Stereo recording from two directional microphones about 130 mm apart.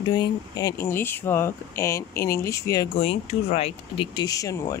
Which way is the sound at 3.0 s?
50° left (ahead or behind).